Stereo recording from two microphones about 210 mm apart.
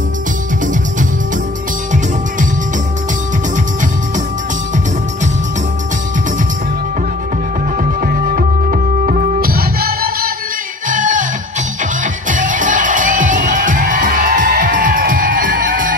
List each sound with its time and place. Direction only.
8.0 s music: 40° right (ahead or behind)